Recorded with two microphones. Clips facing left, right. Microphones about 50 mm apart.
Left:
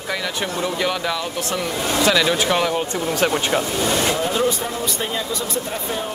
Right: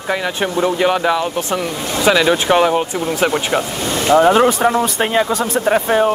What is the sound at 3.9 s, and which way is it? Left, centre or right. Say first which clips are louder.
Speech: right 13 dB; right.